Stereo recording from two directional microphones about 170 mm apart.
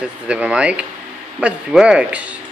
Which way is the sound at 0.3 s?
5° right (ahead or behind).